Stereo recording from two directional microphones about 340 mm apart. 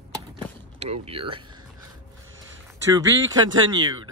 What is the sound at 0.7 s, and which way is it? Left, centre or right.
Speech, centre.